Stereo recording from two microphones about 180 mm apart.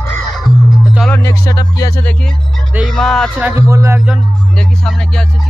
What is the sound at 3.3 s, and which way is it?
Speech, 10° right (ahead or behind).